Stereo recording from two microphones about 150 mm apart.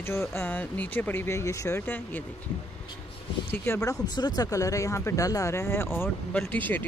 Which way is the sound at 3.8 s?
30° left (ahead or behind).